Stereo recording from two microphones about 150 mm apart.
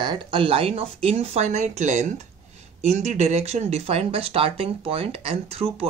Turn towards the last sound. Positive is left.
turn(degrees=-40)  # may be behind; listen again after turning